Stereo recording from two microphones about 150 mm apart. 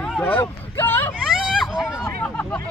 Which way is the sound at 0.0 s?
10° left (ahead or behind).